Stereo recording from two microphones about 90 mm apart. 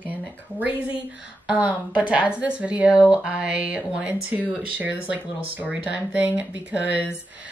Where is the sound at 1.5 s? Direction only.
15° right (ahead or behind).